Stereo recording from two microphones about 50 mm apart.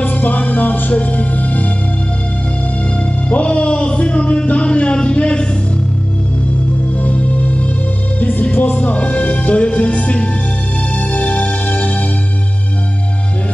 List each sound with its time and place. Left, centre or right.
0.0 s music: left
3.3 s speech: left
7.0 s music: left